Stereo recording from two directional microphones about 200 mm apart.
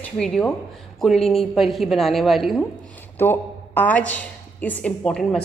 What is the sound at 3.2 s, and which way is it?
A woman's voice, 10° left (ahead or behind).